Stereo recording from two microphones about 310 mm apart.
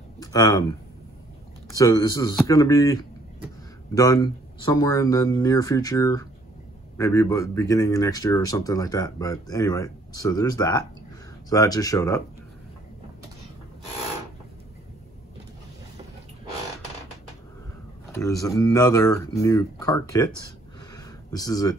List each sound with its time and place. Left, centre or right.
0.2 s speech: centre
1.8 s speech: centre
18.1 s speech: centre
20.9 s a sound: centre